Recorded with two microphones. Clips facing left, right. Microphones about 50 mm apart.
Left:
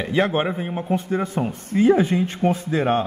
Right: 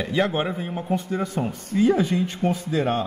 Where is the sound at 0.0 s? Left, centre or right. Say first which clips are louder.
Left 2 dB; left.